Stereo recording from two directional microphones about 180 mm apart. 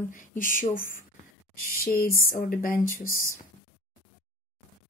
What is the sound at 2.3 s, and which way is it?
Speech, 50° left (ahead or behind).